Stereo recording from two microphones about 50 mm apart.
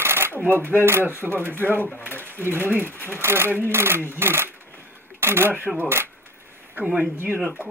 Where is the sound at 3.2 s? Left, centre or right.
Right.